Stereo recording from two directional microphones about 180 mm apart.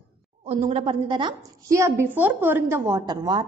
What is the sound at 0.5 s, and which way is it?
A woman's voice, 35° right (ahead or behind).